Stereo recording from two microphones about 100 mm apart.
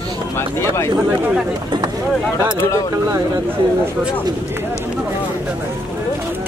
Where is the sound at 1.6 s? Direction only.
45° right (ahead or behind).